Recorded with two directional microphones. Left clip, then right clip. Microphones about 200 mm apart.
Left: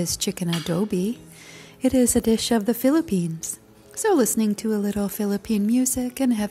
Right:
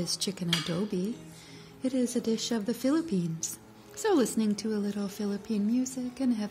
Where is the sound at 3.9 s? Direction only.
20° left (ahead or behind).